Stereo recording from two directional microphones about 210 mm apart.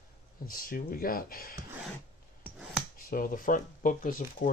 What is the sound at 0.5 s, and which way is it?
Speech, 45° left (ahead or behind).